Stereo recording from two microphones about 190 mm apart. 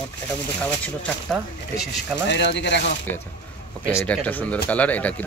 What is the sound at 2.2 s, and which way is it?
Speech, 65° left (ahead or behind).